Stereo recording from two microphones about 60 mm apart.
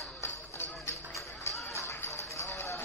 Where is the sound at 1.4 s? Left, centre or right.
Left.